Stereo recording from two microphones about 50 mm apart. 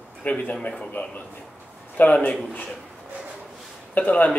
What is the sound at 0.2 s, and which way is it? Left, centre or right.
Speech, left.